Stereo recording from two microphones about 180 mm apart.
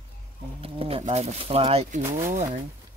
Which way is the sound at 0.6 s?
30° right (ahead or behind).